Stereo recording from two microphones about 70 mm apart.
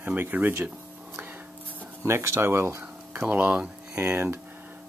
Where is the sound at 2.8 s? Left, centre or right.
Right.